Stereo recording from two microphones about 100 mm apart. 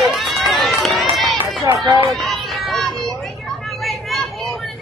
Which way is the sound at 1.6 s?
35° right (ahead or behind).